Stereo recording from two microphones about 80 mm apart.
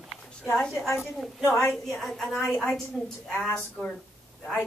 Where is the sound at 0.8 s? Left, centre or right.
Left.